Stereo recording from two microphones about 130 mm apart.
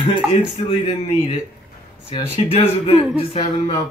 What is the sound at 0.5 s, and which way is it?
Speech, 55° left (ahead or behind).